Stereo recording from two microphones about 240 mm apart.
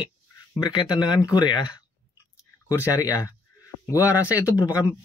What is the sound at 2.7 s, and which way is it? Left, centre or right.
Speech, centre.